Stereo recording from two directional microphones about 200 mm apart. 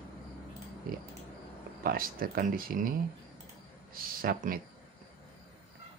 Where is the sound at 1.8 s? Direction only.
45° right (ahead or behind).